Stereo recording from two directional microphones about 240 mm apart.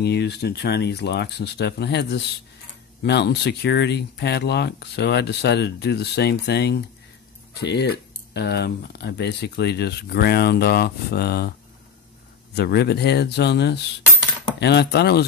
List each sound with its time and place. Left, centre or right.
0.0 s speech: left
12.5 s speech: left